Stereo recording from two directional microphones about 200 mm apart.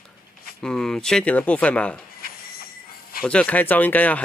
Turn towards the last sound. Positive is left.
turn(degrees=10)  # may be behind; listen again after turning